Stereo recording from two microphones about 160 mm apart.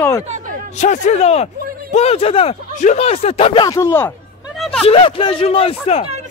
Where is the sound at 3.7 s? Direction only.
15° left (ahead or behind).